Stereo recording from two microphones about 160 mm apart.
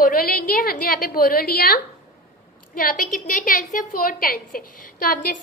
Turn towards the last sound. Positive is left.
turn(degrees=65)  # may be behind; listen again after turning